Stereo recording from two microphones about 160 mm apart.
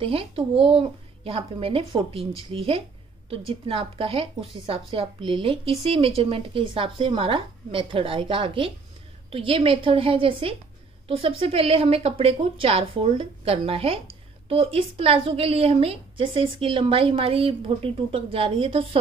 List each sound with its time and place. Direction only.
0.0 s a woman's voice: 35° right (ahead or behind)